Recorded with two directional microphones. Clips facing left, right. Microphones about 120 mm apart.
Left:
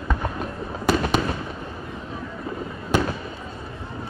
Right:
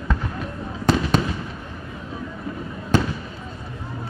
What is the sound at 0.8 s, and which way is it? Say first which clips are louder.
Fireworks: right 1 dB; 10° left (ahead or behind).